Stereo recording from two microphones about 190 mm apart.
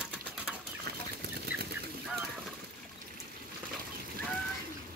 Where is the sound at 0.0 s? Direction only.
5° right (ahead or behind).